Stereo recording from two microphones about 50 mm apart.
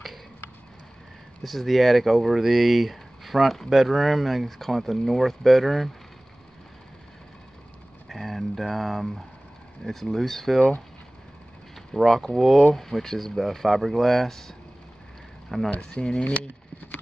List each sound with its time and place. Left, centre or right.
1.4 s speech: centre
8.1 s a sound: centre
9.8 s speech: centre
11.9 s speech: centre
15.7 s speech: left